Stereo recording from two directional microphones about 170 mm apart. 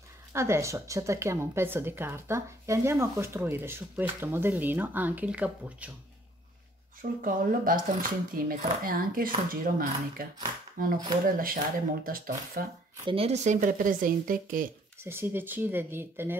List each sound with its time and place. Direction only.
0.3 s a woman's voice: 15° right (ahead or behind)
7.0 s speech: 55° right (ahead or behind)
13.0 s speech: 35° right (ahead or behind); by 14.7 s 55° right (ahead or behind)
15.0 s a woman's voice: 15° right (ahead or behind)